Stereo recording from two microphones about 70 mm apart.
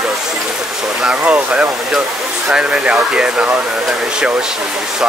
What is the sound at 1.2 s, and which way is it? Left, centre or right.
Speech, right.